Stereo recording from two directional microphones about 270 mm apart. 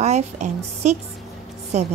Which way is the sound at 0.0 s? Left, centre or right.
Right.